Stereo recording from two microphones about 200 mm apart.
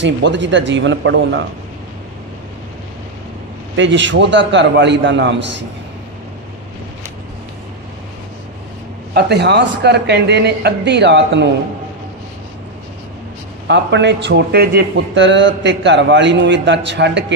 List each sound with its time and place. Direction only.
0.0 s speech: 65° right (ahead or behind)
3.7 s a man's voice: 65° right (ahead or behind)
9.1 s a man's voice: 55° right (ahead or behind)
13.7 s a man's voice: 60° right (ahead or behind)